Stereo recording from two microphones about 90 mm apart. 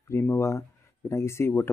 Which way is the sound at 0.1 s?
30° left (ahead or behind).